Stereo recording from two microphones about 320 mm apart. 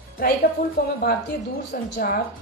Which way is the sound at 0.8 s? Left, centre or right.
Left.